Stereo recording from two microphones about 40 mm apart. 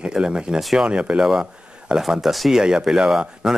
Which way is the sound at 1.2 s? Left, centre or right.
Centre.